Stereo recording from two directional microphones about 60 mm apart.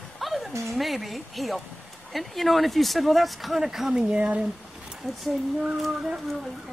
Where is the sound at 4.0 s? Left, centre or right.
Right.